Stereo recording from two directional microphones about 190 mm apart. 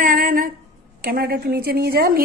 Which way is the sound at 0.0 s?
50° right (ahead or behind).